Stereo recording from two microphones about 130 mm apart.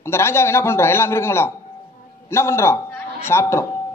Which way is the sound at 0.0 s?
20° left (ahead or behind).